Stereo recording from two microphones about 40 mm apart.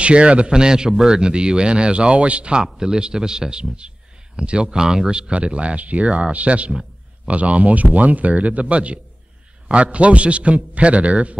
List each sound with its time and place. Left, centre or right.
0.0 s speech: right